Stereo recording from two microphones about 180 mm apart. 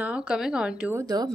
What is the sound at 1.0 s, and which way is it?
Speech, 20° right (ahead or behind).